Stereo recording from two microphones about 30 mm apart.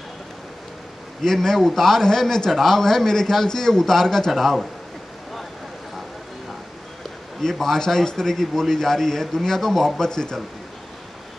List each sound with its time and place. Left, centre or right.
1.2 s a man's voice: centre
7.4 s a man's voice: centre
10.0 s a man's voice: left